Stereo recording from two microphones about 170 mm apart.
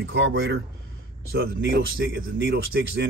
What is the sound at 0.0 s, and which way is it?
Speech, 90° right.